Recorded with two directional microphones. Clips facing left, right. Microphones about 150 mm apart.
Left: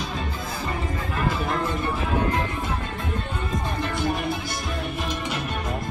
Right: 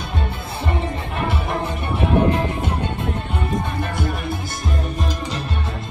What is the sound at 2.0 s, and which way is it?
Music, 25° right (ahead or behind).